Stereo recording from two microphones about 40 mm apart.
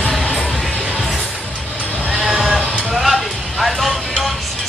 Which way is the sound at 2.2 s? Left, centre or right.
Centre.